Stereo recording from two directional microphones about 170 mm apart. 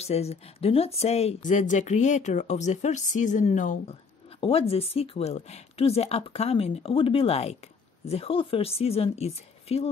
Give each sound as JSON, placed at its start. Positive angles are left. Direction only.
{"t": 0.0, "sound": "speech", "side_deg": 40}
{"t": 4.4, "sound": "speech", "side_deg": 35}